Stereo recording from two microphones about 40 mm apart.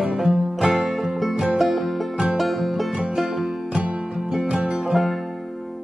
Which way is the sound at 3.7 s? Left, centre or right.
Right.